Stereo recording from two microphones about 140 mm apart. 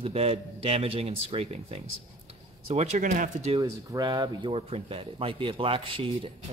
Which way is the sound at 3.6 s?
30° right (ahead or behind).